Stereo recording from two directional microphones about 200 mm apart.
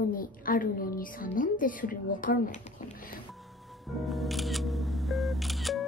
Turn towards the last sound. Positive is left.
turn(degrees=0)  # may be behind; listen again after turning